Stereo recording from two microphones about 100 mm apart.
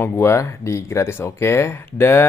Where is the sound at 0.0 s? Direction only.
25° left (ahead or behind).